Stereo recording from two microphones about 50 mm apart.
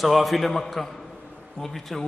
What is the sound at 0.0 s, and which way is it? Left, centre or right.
A man's voice, centre.